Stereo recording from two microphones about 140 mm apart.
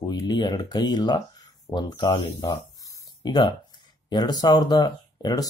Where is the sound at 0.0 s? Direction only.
30° left (ahead or behind).